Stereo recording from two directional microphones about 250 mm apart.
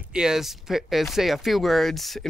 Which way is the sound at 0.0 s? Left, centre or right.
Centre.